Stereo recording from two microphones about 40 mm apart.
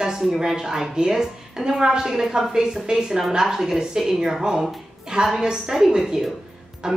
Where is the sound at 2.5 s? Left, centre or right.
Centre.